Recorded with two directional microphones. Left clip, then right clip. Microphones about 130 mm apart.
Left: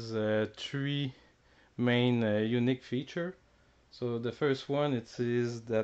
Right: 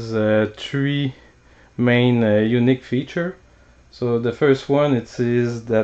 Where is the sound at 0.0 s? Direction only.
40° left (ahead or behind).